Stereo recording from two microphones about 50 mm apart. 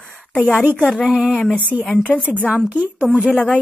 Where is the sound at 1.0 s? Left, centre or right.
Centre.